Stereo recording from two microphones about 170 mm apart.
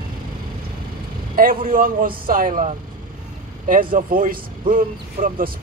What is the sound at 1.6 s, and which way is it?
A man's voice, 55° right (ahead or behind).